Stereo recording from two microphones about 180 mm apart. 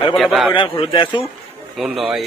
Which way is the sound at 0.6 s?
30° left (ahead or behind).